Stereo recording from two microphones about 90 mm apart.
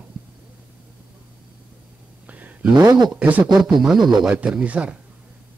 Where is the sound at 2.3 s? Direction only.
15° right (ahead or behind).